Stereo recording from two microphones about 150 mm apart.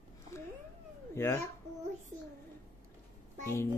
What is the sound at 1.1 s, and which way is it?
Speech, 15° left (ahead or behind).